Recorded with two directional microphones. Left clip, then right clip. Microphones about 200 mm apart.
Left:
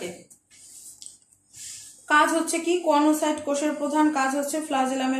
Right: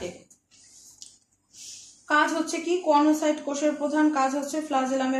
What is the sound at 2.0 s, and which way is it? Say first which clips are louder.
A woman's voice: left 3 dB; centre (ahead or behind).